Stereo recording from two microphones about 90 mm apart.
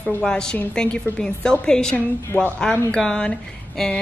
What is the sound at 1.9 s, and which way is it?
Speech, 20° left (ahead or behind).